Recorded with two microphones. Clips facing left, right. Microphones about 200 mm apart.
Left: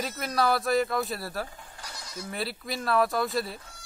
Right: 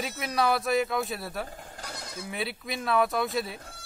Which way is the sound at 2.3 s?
Centre (ahead or behind).